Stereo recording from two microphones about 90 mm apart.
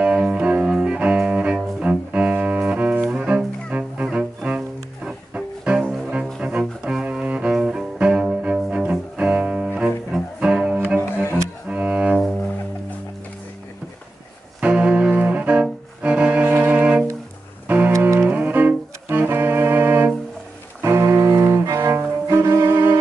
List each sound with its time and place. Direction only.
0.0 s music: 10° right (ahead or behind)
6.4 s double bass: 10° right (ahead or behind)
9.8 s music: 5° right (ahead or behind)
11.7 s double bass: 15° right (ahead or behind)
14.6 s music: 15° right (ahead or behind)
20.8 s cello: 25° right (ahead or behind)